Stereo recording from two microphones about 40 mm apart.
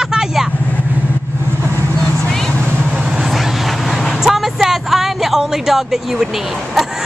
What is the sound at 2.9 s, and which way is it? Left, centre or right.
Vehicle, centre.